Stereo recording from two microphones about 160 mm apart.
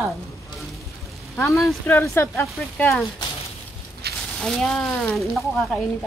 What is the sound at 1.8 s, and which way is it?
Speech, 15° left (ahead or behind).